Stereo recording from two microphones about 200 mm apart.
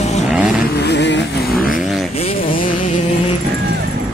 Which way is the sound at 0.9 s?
60° left (ahead or behind).